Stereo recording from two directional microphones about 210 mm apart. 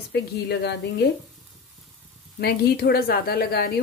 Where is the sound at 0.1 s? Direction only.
50° left (ahead or behind).